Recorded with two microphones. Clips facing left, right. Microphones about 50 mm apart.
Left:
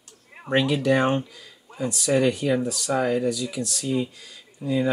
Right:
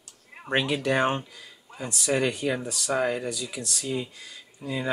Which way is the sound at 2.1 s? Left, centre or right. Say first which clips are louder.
Left 4 dB; centre.